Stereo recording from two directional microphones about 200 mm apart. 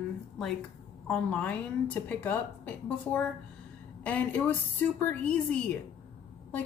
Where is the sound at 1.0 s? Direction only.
5° left (ahead or behind).